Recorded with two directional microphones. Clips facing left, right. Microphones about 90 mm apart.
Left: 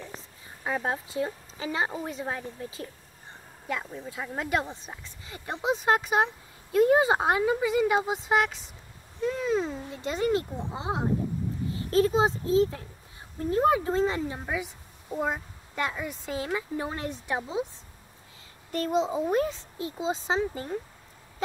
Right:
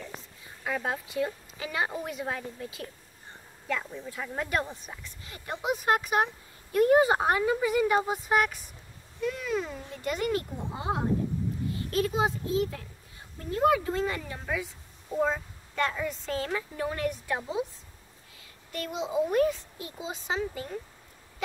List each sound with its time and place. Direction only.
0.7 s speech: 30° left (ahead or behind)
3.6 s speech: 15° left (ahead or behind)
9.2 s a child's voice: 30° left (ahead or behind); by 16.6 s 10° left (ahead or behind)
16.7 s speech: 25° left (ahead or behind)
18.7 s a child's voice: 35° left (ahead or behind)
19.3 s speech: 25° left (ahead or behind)